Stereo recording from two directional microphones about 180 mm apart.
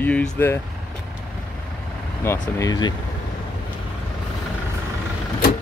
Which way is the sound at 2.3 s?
20° left (ahead or behind).